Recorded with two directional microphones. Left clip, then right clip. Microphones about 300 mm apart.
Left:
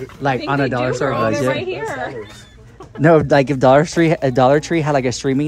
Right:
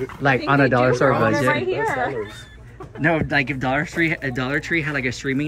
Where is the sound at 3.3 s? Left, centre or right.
Centre.